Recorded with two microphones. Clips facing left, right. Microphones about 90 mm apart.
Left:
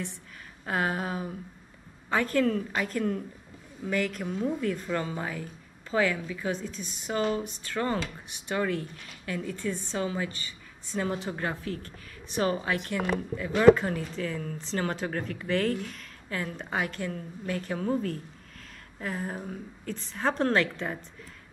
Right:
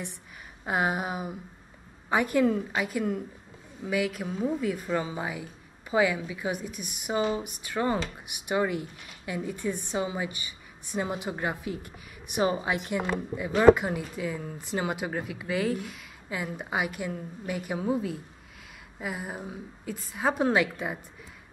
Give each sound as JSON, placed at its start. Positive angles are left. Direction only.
{"t": 0.7, "sound": "a woman's voice", "side_deg": -15}